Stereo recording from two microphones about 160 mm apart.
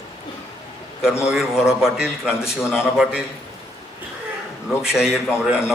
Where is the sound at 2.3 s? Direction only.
15° left (ahead or behind).